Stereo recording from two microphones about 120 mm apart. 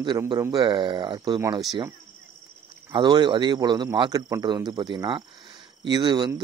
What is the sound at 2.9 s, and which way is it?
Speech, 40° right (ahead or behind).